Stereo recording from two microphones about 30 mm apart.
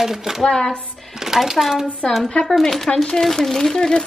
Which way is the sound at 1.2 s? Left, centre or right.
Centre.